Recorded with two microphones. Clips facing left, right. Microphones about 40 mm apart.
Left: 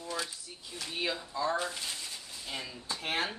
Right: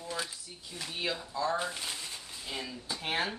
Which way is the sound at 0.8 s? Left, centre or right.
Centre.